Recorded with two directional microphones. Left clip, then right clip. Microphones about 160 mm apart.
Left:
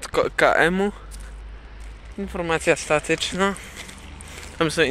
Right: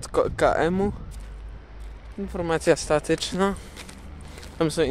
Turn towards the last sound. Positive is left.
turn(degrees=-15)  # may be behind; listen again after turning